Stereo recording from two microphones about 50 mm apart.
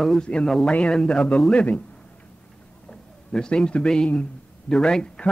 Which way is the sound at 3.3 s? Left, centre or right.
Centre.